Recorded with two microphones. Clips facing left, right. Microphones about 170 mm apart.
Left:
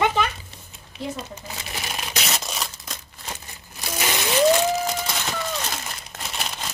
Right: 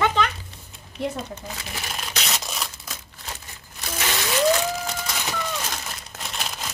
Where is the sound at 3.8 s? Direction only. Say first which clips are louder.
Left 2 dB; 10° left (ahead or behind).